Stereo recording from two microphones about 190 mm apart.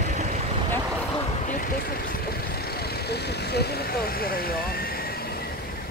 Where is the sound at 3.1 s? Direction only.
60° left (ahead or behind).